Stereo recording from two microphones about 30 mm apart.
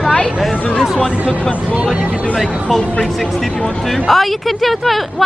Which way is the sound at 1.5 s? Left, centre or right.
Right.